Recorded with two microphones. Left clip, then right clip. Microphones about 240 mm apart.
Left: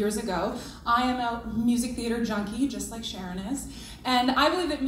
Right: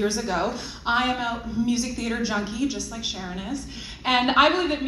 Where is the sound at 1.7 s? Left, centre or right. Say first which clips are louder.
Even; left.